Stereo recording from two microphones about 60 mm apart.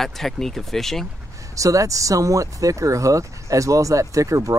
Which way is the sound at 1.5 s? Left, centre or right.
Right.